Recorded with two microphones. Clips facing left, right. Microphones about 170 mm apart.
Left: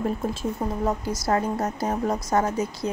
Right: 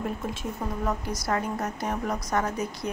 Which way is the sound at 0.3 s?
30° left (ahead or behind).